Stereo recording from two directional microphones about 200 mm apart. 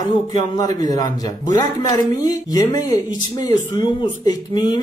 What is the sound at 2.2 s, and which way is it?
Speech, 20° left (ahead or behind).